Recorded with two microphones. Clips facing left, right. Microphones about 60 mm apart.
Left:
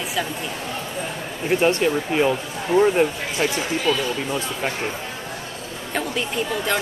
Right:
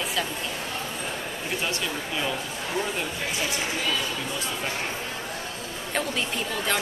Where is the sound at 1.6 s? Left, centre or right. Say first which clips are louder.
Left 13 dB; left.